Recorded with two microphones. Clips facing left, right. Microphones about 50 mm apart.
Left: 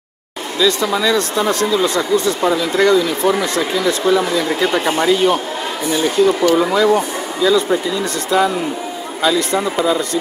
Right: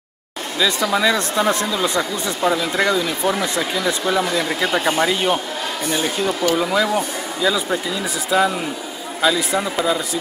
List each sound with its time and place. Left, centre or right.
0.6 s speech: centre